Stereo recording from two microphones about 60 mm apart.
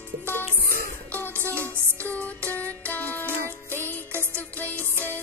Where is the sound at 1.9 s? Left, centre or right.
Left.